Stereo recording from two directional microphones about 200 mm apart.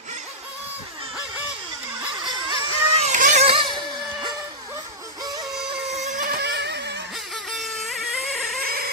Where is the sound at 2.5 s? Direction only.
30° right (ahead or behind).